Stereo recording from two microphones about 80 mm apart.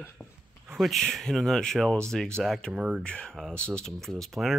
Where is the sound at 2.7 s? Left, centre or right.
Centre.